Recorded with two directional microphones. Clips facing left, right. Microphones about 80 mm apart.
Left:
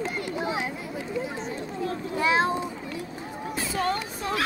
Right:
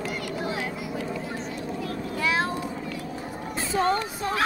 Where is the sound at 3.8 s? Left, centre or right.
Right.